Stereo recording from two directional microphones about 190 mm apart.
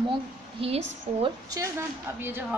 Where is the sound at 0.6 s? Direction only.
30° right (ahead or behind).